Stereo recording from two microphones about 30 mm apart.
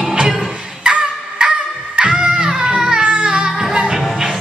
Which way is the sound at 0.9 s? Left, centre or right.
Right.